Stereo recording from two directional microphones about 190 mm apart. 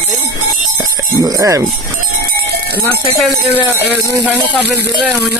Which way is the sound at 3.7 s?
10° right (ahead or behind).